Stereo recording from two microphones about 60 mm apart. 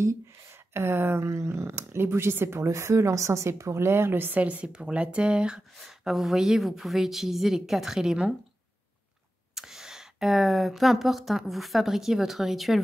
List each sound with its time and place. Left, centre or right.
0.7 s speech: right
4.4 s a woman's voice: right
5.8 s speech: centre
9.6 s speech: centre